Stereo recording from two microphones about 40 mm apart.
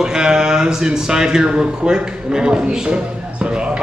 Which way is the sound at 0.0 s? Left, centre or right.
Centre.